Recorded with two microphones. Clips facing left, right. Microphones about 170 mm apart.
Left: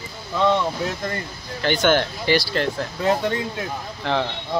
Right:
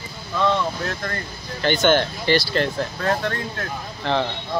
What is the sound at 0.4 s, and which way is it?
Speech, 20° left (ahead or behind).